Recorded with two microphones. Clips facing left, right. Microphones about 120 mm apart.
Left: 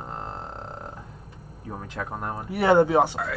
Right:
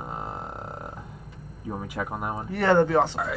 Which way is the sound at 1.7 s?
5° right (ahead or behind).